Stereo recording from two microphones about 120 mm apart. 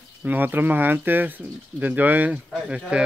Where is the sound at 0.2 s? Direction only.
15° right (ahead or behind).